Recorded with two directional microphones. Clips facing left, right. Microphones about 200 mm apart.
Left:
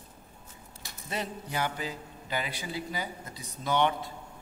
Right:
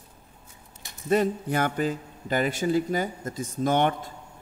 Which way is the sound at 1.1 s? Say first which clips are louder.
Right 13 dB; 50° right (ahead or behind).